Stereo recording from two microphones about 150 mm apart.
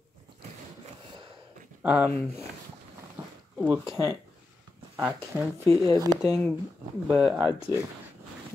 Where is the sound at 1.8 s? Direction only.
10° right (ahead or behind).